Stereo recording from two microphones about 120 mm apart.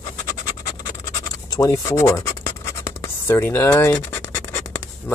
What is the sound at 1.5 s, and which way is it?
Speech, 30° left (ahead or behind).